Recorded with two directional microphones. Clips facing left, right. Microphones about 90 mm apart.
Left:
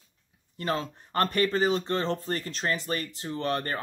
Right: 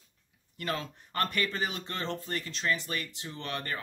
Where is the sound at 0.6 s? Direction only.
30° left (ahead or behind).